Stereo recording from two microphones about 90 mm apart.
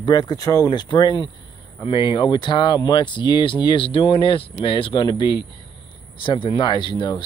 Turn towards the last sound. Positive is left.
turn(degrees=60)  # may be behind; listen again after turning